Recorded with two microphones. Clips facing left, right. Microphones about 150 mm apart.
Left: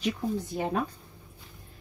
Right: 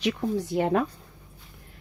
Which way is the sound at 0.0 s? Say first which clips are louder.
Right 3 dB; 75° right (ahead or behind).